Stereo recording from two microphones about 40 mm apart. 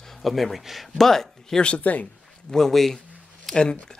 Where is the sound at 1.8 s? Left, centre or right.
Left.